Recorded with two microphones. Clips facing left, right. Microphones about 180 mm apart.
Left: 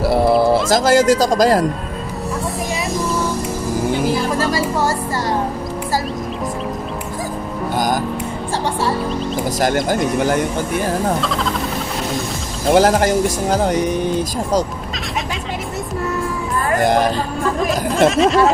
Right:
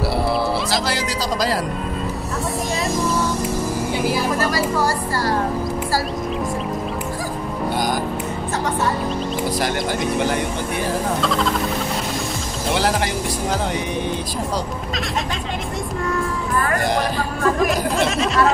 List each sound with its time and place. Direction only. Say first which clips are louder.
0.0 s speech: left 7 dB; 50° left (ahead or behind)
4.4 s a woman's voice: left 2 dB; 25° left (ahead or behind)
9.6 s speech: left 5 dB; 45° left (ahead or behind)
12.7 s speech: left 8 dB; 45° left (ahead or behind)
16.8 s speech: left 6 dB; 50° left (ahead or behind)
17.6 s speech: left 4 dB; centre (ahead or behind)